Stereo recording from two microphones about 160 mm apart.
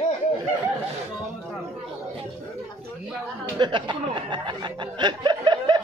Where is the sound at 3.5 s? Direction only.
30° right (ahead or behind).